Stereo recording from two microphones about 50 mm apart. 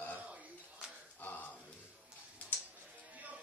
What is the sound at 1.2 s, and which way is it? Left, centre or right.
Music, left.